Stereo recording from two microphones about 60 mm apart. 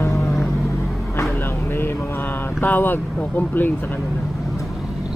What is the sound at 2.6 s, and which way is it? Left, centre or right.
Speech, left.